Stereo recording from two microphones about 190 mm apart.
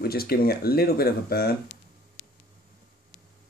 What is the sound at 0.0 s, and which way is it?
Speech, 55° left (ahead or behind).